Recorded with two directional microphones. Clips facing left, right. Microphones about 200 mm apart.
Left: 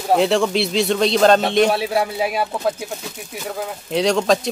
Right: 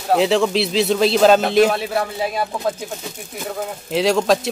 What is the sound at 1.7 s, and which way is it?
Speech, 10° left (ahead or behind).